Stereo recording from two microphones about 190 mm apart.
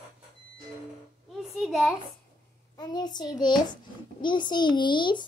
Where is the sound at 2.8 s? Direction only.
20° left (ahead or behind).